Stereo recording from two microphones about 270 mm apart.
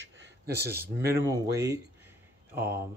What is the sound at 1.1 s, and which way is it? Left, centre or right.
Speech, centre.